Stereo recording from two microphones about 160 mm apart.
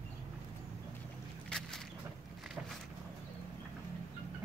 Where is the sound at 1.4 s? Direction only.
5° left (ahead or behind).